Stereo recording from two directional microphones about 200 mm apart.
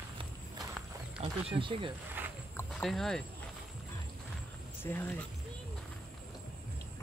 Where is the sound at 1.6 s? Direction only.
25° right (ahead or behind).